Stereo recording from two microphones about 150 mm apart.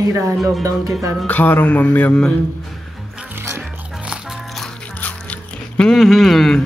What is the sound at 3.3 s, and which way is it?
Music, 15° right (ahead or behind).